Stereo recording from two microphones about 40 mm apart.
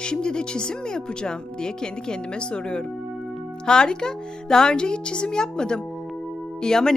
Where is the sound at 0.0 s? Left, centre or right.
Left.